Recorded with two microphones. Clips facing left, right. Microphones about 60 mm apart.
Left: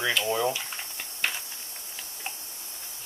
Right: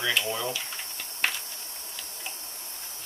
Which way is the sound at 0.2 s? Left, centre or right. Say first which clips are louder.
Left 5 dB; centre.